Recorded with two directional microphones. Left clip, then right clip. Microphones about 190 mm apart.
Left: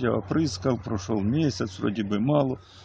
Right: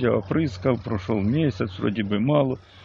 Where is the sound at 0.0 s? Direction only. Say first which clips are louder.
Right 3 dB; 15° right (ahead or behind).